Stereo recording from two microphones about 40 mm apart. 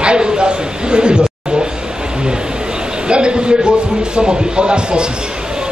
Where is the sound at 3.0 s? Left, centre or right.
Right.